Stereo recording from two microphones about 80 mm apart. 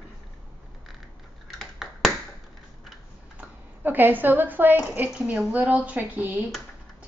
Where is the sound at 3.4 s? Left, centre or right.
Right.